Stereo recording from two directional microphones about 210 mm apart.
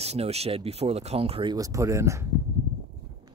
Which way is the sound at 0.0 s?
30° right (ahead or behind).